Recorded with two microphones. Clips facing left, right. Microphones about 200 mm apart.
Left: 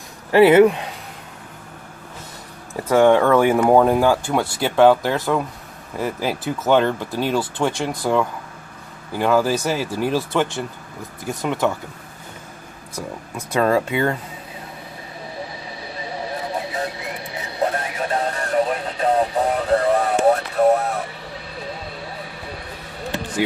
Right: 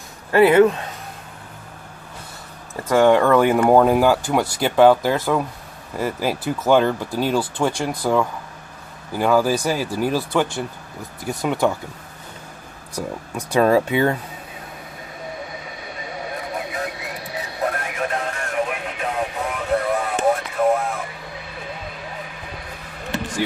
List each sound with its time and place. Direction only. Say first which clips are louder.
0.3 s speech: left 2 dB; 15° left (ahead or behind)
2.7 s speech: left 1 dB; 5° left (ahead or behind)
11.4 s speech: right 1 dB; 10° right (ahead or behind)
12.9 s speech: right 3 dB; 10° right (ahead or behind)
15.8 s vehicle: left 3 dB; 30° left (ahead or behind)
17.7 s radio: left 2 dB; 30° left (ahead or behind)
21.7 s vehicle: left 1 dB; 35° left (ahead or behind)